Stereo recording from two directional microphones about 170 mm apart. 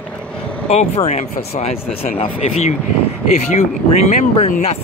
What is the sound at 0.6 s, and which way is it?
Speech, 40° left (ahead or behind).